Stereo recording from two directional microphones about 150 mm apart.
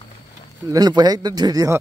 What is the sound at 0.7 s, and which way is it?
Speech, 30° right (ahead or behind).